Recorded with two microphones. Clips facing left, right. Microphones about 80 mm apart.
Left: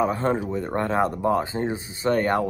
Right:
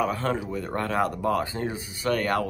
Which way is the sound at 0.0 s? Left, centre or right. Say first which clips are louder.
Left 3 dB; left.